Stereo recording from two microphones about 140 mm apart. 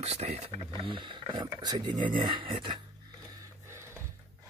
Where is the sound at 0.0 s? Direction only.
50° right (ahead or behind).